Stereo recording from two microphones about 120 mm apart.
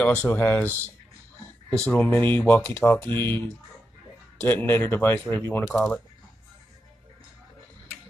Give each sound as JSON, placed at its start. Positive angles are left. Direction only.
{"t": 0.0, "sound": "speech", "side_deg": 15}
{"t": 1.9, "sound": "speech", "side_deg": 15}